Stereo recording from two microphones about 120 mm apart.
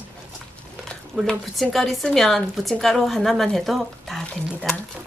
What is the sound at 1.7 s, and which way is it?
A woman's voice, centre (ahead or behind).